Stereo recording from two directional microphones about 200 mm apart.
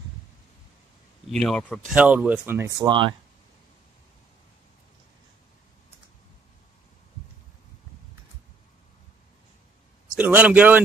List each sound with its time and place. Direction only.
1.3 s speech: 5° left (ahead or behind)
2.0 s speech: 5° right (ahead or behind)
2.8 s speech: 20° right (ahead or behind)
10.1 s speech: 5° right (ahead or behind)